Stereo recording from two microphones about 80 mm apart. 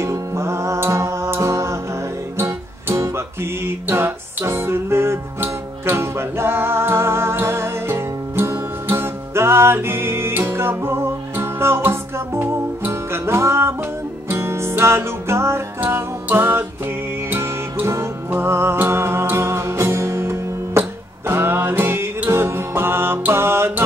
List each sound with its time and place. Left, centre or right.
0.0 s music: right